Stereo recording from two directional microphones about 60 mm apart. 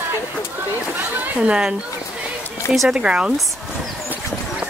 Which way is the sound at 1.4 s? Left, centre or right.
Centre.